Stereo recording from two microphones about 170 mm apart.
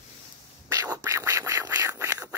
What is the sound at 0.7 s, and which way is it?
Scratch, 20° right (ahead or behind).